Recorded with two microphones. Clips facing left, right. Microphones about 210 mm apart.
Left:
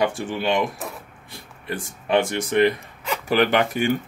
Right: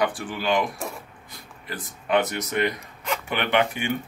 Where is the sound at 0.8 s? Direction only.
Centre (ahead or behind).